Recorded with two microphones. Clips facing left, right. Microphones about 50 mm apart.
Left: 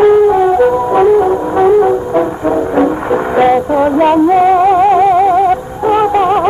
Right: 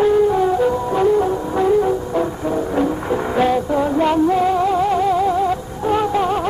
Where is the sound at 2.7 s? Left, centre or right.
Left.